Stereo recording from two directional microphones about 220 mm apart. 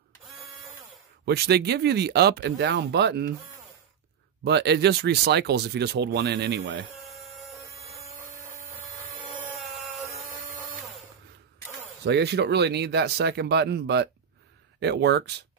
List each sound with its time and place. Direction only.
1.2 s speech: 45° right (ahead or behind)
4.5 s speech: 50° right (ahead or behind)
10.0 s a sound: centre (ahead or behind)
12.0 s speech: 50° right (ahead or behind)